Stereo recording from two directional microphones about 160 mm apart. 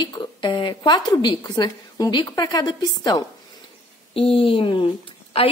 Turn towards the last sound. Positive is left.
turn(degrees=35)  # may be behind; listen again after turning